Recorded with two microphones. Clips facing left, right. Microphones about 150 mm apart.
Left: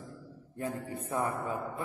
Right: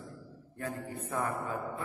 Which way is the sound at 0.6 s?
15° left (ahead or behind).